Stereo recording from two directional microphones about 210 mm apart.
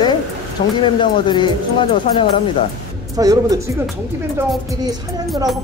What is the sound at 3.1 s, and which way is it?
Speech, 15° right (ahead or behind).